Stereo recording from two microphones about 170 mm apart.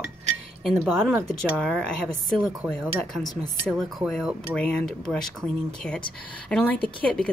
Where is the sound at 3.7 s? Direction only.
Centre (ahead or behind).